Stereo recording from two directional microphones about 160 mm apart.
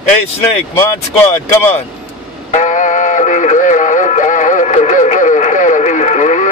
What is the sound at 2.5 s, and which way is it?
Music, 50° left (ahead or behind).